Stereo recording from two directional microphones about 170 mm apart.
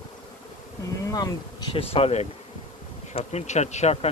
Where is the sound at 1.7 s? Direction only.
35° left (ahead or behind).